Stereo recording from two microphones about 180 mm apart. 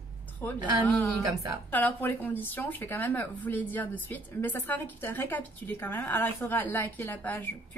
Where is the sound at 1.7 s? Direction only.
10° left (ahead or behind).